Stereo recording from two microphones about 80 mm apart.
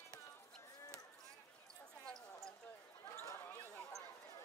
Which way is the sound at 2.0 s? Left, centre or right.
Centre.